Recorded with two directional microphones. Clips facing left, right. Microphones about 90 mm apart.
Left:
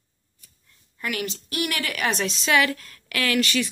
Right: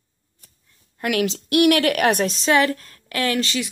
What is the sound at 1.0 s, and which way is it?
A woman's voice, 80° right.